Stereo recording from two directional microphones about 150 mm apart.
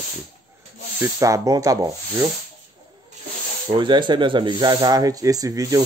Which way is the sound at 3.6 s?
30° right (ahead or behind).